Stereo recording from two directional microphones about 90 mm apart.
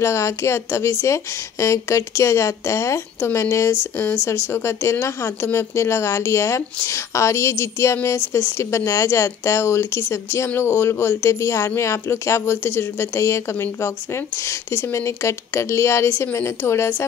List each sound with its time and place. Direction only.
0.0 s speech: 30° left (ahead or behind)